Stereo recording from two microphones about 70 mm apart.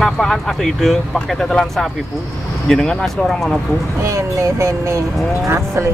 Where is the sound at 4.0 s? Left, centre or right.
Right.